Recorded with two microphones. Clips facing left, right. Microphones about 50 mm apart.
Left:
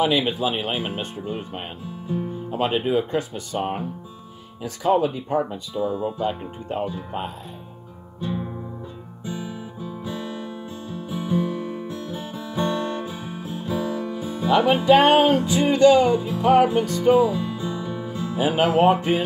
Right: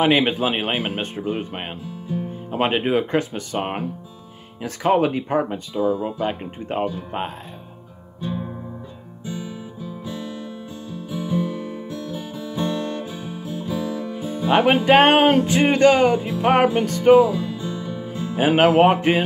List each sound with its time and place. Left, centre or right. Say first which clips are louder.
0.0 s music: right 3 dB; right
8.2 s music: even; centre
9.2 s guitar: even; centre
10.0 s music: left 1 dB; centre
14.5 s music: right 1 dB; right
17.3 s music: right 1 dB; centre
18.0 s music: right 3 dB; right